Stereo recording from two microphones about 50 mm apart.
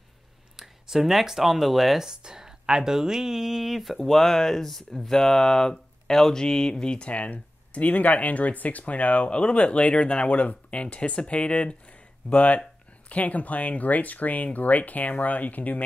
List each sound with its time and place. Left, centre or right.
0.6 s speech: centre; by 15.8 s left